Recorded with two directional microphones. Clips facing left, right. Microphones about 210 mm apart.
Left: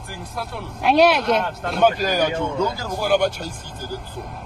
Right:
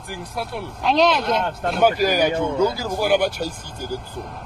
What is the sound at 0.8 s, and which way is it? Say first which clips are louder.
Speech: left 2 dB; 10° left (ahead or behind).